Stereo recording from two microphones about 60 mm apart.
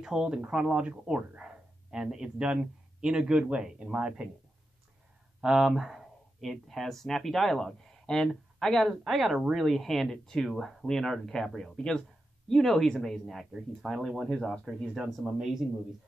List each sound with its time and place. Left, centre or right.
0.0 s speech: centre
5.4 s speech: centre
14.2 s speech: centre